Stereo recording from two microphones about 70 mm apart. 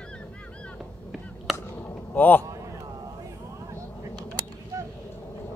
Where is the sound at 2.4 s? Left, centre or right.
Right.